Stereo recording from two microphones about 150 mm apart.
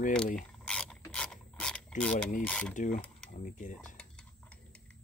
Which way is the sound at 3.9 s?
5° left (ahead or behind).